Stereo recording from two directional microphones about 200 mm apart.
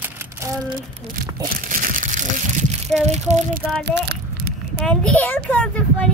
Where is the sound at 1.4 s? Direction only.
45° right (ahead or behind).